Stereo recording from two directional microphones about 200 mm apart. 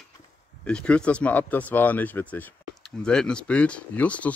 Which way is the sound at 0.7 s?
5° left (ahead or behind).